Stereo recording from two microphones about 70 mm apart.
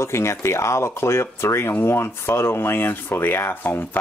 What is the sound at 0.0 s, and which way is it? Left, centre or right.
Speech, left.